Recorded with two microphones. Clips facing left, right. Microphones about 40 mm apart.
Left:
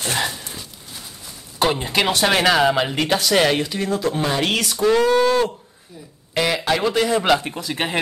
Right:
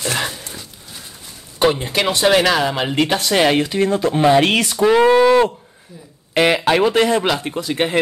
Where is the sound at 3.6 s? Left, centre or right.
Right.